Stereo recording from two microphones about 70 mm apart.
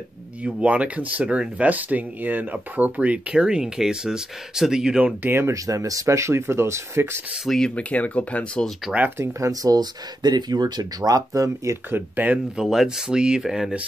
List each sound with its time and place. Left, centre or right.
0.4 s speech: centre
5.2 s speech: right
5.5 s speech: right
7.4 s speech: centre
7.7 s speech: left
8.9 s speech: centre
9.2 s speech: right
11.9 s speech: right
12.5 s speech: centre